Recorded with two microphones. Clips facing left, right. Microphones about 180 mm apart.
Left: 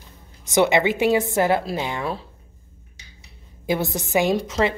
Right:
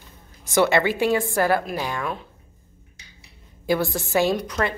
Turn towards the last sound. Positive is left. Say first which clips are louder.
# left 2 dB
turn(degrees=25)  # may be behind; listen again after turning